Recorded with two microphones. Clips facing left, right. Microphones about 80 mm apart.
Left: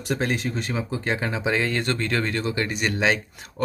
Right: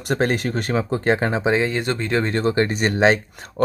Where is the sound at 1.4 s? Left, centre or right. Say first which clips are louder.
Right 4 dB; right.